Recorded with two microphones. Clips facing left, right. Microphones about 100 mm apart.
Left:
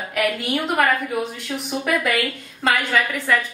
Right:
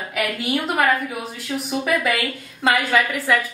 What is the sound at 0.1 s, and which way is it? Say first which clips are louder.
A woman's voice: left 1 dB; centre (ahead or behind).